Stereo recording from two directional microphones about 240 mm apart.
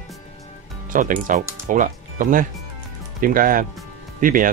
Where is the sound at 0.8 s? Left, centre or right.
Right.